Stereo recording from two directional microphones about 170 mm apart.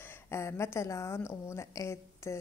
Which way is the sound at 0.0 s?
15° left (ahead or behind).